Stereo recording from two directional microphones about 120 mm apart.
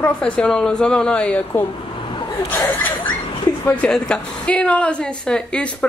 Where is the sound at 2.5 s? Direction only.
15° left (ahead or behind).